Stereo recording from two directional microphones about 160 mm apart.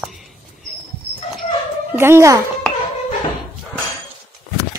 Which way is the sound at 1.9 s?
15° right (ahead or behind).